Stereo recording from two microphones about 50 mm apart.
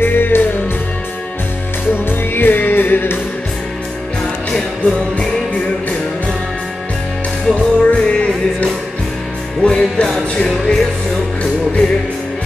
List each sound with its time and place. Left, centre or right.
0.0 s music: left
2.0 s music: left
4.5 s music: centre
7.4 s music: centre